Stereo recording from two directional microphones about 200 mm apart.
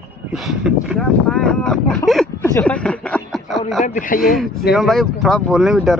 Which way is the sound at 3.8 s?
40° left (ahead or behind).